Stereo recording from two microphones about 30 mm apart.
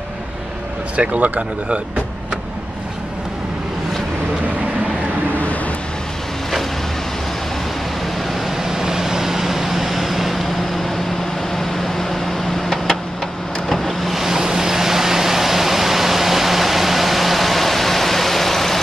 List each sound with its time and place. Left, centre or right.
0.9 s speech: right
8.5 s vehicle: centre
14.1 s vehicle: centre